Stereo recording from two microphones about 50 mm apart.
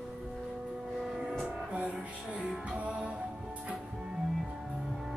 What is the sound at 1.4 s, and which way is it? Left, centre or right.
Music, right.